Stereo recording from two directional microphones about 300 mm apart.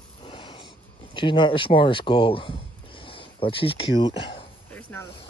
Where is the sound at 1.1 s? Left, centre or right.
Centre.